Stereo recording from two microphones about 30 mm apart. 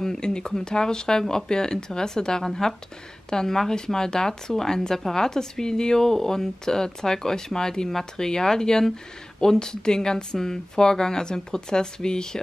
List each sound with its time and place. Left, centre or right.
0.2 s speech: left